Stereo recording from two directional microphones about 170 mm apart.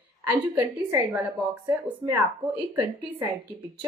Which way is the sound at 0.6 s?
20° right (ahead or behind).